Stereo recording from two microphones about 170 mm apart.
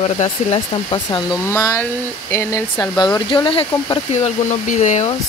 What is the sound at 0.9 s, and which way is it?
Speech, 30° left (ahead or behind).